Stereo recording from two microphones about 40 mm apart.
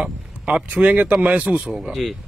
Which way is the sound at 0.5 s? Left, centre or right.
Right.